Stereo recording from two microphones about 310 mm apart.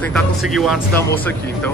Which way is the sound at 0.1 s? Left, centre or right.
Centre.